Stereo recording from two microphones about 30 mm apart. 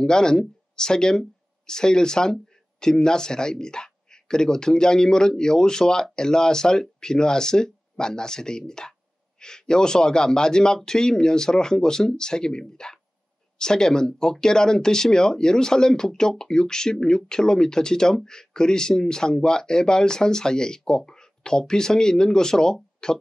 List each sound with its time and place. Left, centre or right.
0.0 s speech: left